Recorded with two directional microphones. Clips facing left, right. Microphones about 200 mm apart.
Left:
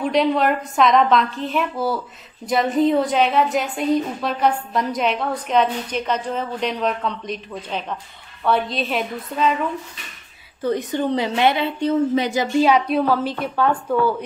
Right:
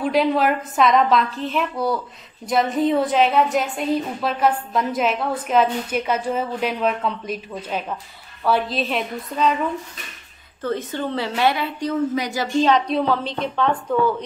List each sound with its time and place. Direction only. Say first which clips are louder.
0.0 s a woman's voice: even; centre (ahead or behind)
10.6 s a woman's voice: left 3 dB; 15° left (ahead or behind)
12.5 s speech: left 1 dB; 10° left (ahead or behind)